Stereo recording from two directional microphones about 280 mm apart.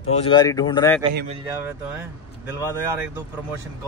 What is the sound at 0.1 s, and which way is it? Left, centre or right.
Speech, centre.